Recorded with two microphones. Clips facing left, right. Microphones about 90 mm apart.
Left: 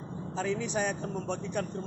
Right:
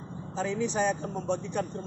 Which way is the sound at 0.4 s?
5° left (ahead or behind).